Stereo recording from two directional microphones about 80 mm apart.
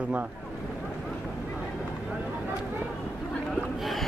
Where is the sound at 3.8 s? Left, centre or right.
Centre.